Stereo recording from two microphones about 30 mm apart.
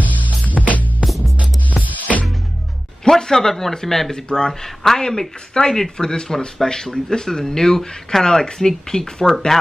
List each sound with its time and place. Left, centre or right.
0.6 s music: left
1.0 s music: centre
1.4 s music: right
3.2 s speech: centre
4.1 s speech: left